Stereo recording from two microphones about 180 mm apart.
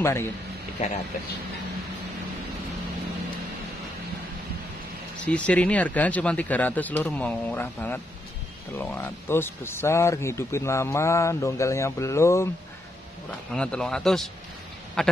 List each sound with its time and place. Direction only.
0.0 s speech: 15° left (ahead or behind)
5.2 s speech: 10° left (ahead or behind)
13.5 s speech: 5° left (ahead or behind)